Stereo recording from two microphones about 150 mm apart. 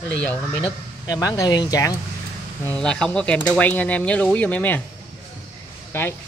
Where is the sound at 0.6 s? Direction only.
25° left (ahead or behind).